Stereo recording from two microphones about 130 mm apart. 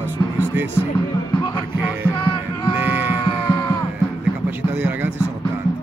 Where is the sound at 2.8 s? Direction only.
15° right (ahead or behind).